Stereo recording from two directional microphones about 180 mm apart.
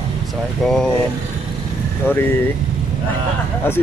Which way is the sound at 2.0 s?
10° left (ahead or behind).